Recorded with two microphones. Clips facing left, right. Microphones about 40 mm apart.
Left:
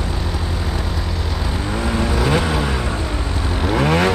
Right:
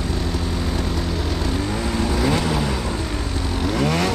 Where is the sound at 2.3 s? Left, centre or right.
Centre.